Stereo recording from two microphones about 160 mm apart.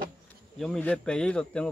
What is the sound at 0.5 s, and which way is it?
Speech, 5° left (ahead or behind).